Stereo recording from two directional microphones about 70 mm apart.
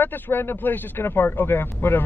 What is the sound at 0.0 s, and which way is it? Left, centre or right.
Speech, left.